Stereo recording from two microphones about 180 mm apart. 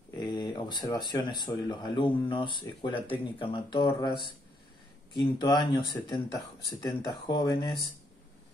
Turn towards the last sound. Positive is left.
turn(degrees=25)  # may be behind; listen again after turning